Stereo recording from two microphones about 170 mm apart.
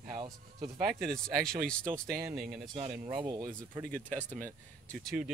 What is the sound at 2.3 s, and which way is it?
Speech, centre (ahead or behind).